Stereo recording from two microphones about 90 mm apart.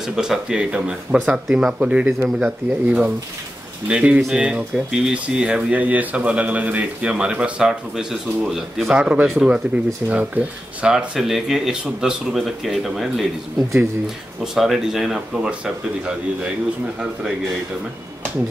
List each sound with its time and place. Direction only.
0.0 s speech: 5° right (ahead or behind)
10.9 s speech: 5° right (ahead or behind)